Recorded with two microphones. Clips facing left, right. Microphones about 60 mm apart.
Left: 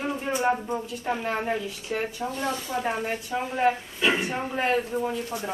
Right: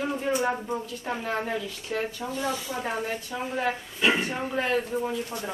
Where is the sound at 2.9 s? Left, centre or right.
Left.